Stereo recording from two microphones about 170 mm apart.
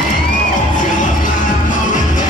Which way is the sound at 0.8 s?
50° left (ahead or behind).